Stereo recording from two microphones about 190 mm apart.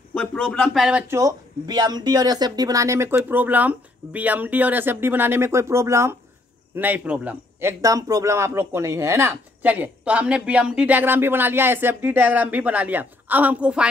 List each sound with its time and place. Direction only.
0.1 s a man's voice: 5° left (ahead or behind)